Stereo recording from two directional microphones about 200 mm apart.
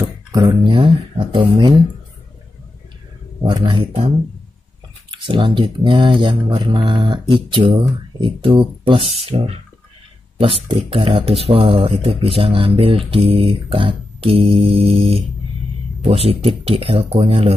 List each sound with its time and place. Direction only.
0.0 s speech: 15° right (ahead or behind)
3.4 s speech: 25° right (ahead or behind)
5.1 s speech: 25° right (ahead or behind)